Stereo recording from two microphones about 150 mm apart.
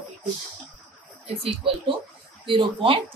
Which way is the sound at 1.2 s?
40° right (ahead or behind).